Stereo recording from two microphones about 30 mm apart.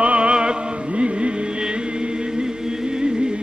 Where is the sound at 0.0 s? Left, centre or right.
Right.